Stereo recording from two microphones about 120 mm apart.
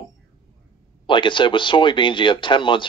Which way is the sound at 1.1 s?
45° left (ahead or behind).